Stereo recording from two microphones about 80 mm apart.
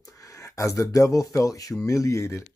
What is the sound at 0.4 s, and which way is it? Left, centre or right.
Speech, left.